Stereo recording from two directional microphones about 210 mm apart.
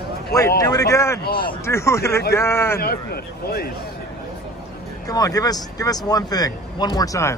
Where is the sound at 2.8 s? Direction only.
45° left (ahead or behind).